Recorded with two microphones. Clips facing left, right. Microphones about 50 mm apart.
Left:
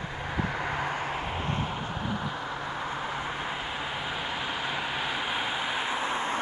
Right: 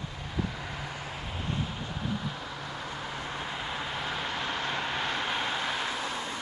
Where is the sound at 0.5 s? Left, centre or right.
Left.